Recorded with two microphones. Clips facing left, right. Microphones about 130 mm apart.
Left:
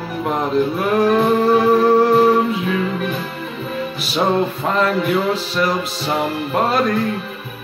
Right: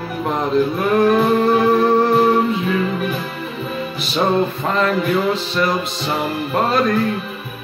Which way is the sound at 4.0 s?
10° left (ahead or behind).